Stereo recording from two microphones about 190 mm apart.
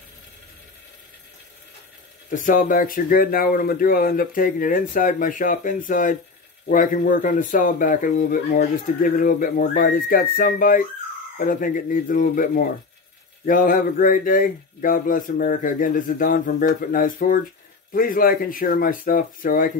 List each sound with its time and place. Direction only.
2.3 s speech: 45° left (ahead or behind)